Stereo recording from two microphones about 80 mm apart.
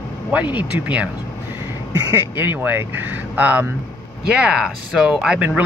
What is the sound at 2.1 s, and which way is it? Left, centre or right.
Speech, right.